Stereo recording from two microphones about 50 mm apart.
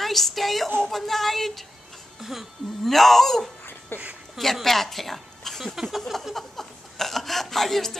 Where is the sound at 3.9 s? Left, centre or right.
Left.